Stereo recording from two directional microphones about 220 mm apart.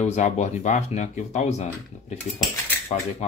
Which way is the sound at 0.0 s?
30° left (ahead or behind).